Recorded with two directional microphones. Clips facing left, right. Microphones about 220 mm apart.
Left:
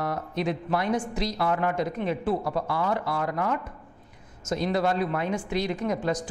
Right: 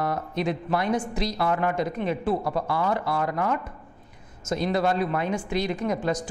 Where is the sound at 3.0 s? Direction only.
15° right (ahead or behind).